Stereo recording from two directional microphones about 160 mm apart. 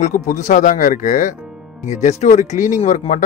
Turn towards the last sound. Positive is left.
turn(degrees=50)  # may be behind; listen again after turning